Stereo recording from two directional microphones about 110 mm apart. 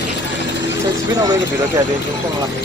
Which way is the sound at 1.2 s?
35° right (ahead or behind).